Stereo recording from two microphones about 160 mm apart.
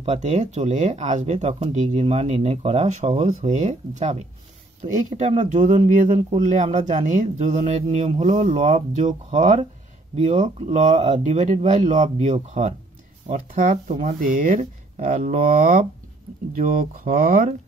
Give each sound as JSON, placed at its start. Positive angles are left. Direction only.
{"t": 0.0, "sound": "speech", "side_deg": -45}